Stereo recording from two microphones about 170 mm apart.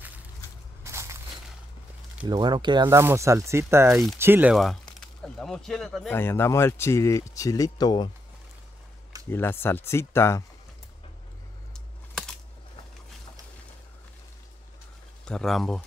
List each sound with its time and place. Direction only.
0.8 s crushing: 15° right (ahead or behind)
2.2 s speech: 25° right (ahead or behind); by 8.1 s 25° left (ahead or behind)
9.3 s speech: 15° left (ahead or behind)
11.7 s a sound: 5° left (ahead or behind)
15.2 s speech: centre (ahead or behind)